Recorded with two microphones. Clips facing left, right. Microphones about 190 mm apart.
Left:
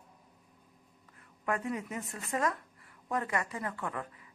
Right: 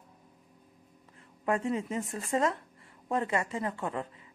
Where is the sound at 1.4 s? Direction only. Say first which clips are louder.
Right 4 dB; 25° right (ahead or behind).